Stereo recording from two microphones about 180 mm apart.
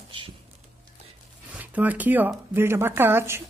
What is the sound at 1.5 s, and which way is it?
A woman's voice, 10° right (ahead or behind).